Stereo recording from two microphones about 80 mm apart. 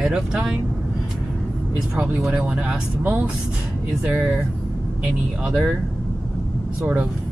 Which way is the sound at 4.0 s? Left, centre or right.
Centre.